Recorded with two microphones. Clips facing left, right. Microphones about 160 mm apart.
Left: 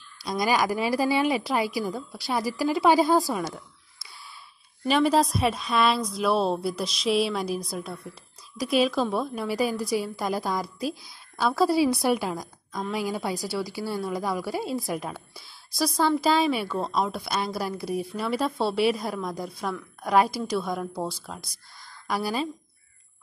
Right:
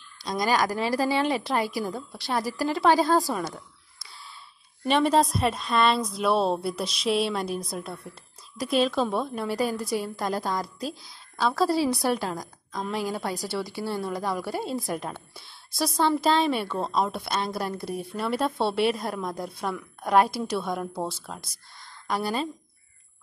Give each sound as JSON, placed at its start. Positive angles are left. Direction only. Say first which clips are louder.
{"t": 0.2, "sound": "a woman's voice", "louder": "even", "side_deg": 5}
{"t": 4.8, "sound": "a woman's voice", "louder": "even", "side_deg": 5}